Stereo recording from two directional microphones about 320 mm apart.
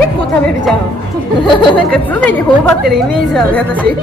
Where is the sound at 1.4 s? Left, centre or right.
Centre.